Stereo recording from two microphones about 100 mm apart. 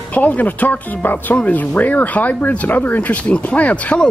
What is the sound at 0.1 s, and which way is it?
Speech, 15° left (ahead or behind).